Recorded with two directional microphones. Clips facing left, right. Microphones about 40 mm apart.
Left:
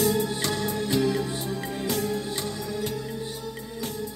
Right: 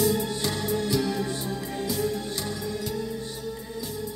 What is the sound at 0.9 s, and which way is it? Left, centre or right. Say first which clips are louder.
Music: left 4 dB; left.